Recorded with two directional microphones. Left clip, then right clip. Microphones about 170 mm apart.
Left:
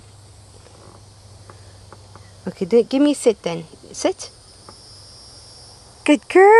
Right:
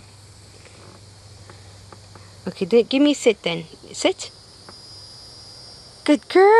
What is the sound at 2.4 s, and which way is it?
Speech, 10° left (ahead or behind).